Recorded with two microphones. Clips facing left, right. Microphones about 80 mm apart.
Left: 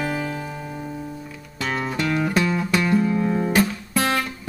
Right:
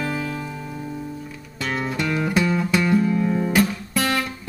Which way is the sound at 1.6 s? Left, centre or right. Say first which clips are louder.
Even; centre.